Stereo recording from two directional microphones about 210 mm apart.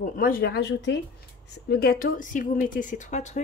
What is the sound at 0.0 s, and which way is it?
Speech, 40° left (ahead or behind).